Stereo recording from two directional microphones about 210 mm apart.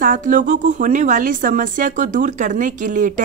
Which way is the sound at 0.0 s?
40° right (ahead or behind).